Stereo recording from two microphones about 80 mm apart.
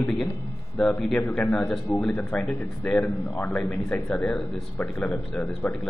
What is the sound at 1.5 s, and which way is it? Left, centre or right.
A man's voice, centre.